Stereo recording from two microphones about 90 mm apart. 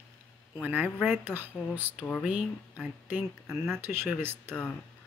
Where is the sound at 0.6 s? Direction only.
15° right (ahead or behind).